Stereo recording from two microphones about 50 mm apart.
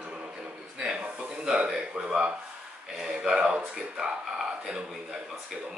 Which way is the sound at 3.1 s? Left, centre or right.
Centre.